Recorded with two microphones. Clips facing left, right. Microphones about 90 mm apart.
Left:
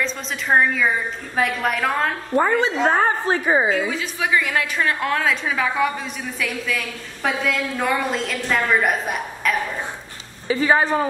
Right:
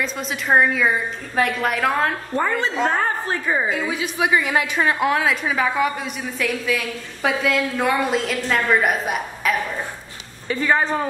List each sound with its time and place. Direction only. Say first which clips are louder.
0.0 s a woman's voice: even; 5° right (ahead or behind)
2.9 s a woman's voice: left 3 dB; 20° left (ahead or behind)
3.9 s a woman's voice: right 2 dB; 15° right (ahead or behind); by 11.1 s 5° left (ahead or behind)